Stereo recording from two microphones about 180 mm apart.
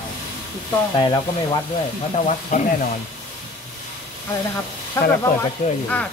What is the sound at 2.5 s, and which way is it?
Speech, 40° left (ahead or behind).